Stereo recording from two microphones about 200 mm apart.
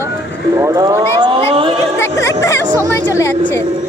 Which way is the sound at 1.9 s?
10° left (ahead or behind).